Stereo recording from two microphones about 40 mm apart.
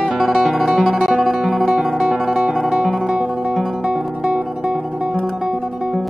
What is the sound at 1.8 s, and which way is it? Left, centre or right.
Music, centre.